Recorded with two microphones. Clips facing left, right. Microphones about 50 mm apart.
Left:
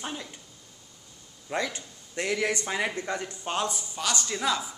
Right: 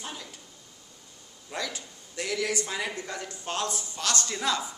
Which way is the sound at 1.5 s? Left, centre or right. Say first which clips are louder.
Left 4 dB; left.